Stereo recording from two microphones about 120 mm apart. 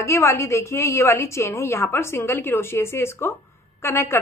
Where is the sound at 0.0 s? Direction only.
20° left (ahead or behind).